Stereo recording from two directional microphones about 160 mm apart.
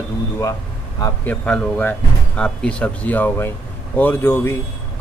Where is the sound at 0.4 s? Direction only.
20° left (ahead or behind).